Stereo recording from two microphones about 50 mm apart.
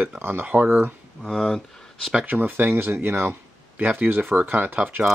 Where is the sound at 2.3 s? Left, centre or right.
Right.